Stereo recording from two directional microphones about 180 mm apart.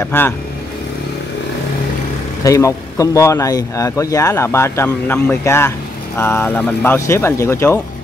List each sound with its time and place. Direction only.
0.0 s a man's voice: 10° left (ahead or behind)
2.4 s a man's voice: 20° left (ahead or behind)